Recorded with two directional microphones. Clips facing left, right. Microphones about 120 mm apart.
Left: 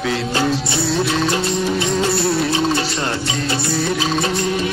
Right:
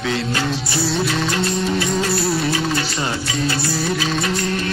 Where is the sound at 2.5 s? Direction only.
25° left (ahead or behind).